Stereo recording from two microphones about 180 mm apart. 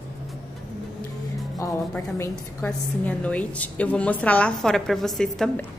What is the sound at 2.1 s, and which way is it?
A woman's voice, 10° left (ahead or behind).